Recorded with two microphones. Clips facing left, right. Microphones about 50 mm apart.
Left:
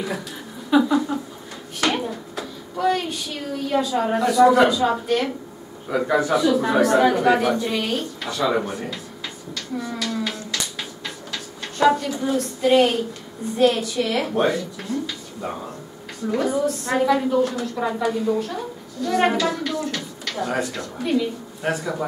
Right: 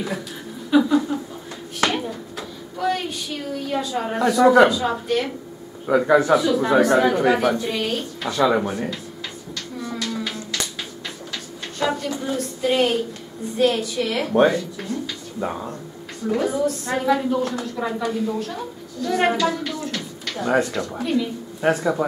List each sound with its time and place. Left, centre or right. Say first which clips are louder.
0.7 s a sound: right 1 dB; centre
4.3 s a woman's voice: right 1 dB; centre
5.9 s a man's voice: right 5 dB; right
6.3 s a woman's voice: right 1 dB; centre
9.6 s a sound: left 2 dB; centre
11.3 s a woman's voice: left 5 dB; centre
16.3 s a woman's voice: even; centre
21.5 s a man's voice: right 6 dB; right